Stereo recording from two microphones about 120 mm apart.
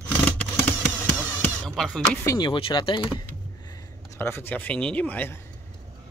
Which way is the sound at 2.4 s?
40° left (ahead or behind).